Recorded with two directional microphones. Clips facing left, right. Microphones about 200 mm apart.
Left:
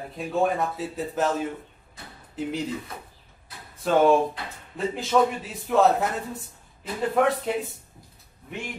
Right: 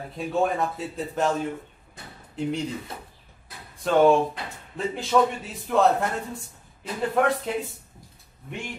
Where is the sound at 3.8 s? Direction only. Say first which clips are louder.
Right 1 dB; centre (ahead or behind).